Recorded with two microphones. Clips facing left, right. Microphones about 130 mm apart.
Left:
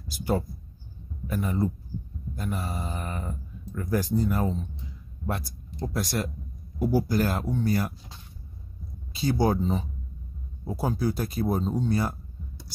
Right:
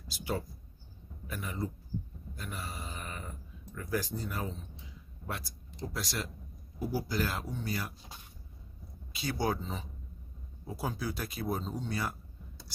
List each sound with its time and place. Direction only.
0.1 s speech: 45° left (ahead or behind)
5.9 s speech: 50° left (ahead or behind)
9.1 s speech: 35° left (ahead or behind)